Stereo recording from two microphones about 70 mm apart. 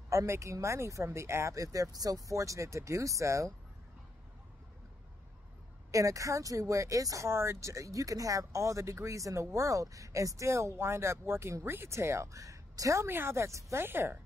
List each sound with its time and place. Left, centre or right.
0.1 s speech: right
5.9 s speech: right
7.2 s speech: right
13.1 s speech: right
13.8 s speech: right